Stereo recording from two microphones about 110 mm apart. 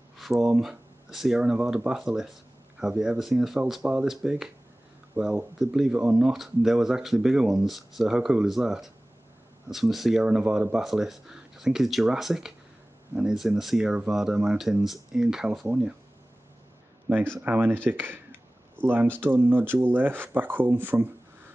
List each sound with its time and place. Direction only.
0.2 s speech: centre (ahead or behind)
17.4 s speech: 15° right (ahead or behind)
17.8 s a sound: 20° right (ahead or behind)
19.1 s speech: 15° right (ahead or behind)